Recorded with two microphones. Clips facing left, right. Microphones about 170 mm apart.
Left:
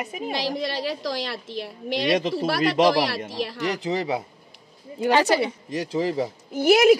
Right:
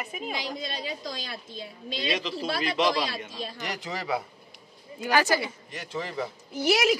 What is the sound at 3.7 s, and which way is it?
A woman's voice, 30° left (ahead or behind).